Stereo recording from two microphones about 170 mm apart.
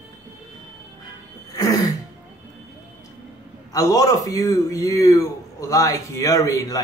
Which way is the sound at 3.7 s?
20° left (ahead or behind).